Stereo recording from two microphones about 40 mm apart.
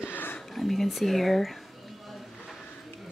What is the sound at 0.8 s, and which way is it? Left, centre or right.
Speech, centre.